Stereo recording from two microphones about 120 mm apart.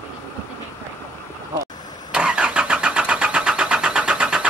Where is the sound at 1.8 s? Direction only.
35° left (ahead or behind).